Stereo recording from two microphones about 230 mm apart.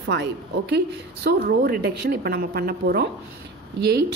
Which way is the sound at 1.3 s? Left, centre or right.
Right.